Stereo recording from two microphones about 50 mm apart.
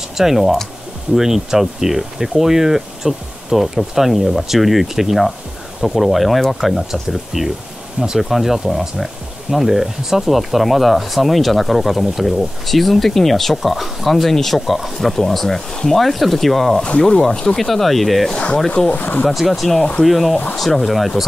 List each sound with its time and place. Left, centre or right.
0.2 s speech: centre
17.3 s speech: centre
17.6 s speech: centre
18.3 s speech: left
18.9 s speech: left
19.2 s speech: centre